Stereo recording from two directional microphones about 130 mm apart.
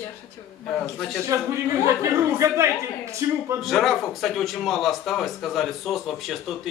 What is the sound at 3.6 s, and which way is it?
Speech, centre (ahead or behind).